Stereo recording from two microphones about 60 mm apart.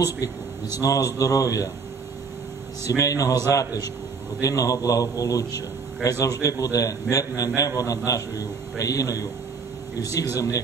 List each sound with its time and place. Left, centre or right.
0.7 s a man's voice: left
3.0 s a man's voice: left
4.4 s a man's voice: left
6.0 s a man's voice: left
6.4 s a man's voice: left
10.3 s a man's voice: left